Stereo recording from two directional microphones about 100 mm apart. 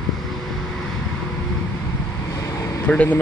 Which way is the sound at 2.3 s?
35° left (ahead or behind).